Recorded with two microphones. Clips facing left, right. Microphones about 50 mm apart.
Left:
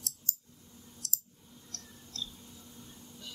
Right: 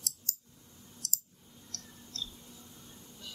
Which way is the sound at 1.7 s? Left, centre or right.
Left.